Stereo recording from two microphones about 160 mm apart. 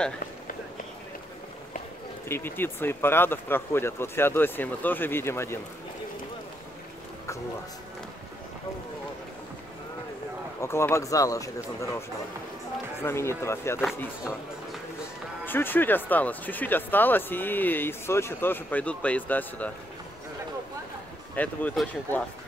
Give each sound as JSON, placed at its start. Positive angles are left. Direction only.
{"t": 2.2, "sound": "speech", "side_deg": 15}
{"t": 10.6, "sound": "speech", "side_deg": 15}
{"t": 13.0, "sound": "speech", "side_deg": 15}
{"t": 15.4, "sound": "speech", "side_deg": 10}
{"t": 21.4, "sound": "speech", "side_deg": 10}